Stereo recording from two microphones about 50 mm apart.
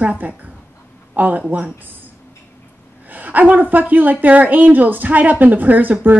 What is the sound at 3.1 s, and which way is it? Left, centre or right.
A woman's voice, right.